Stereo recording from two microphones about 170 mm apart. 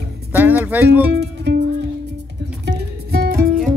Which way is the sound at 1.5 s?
80° right.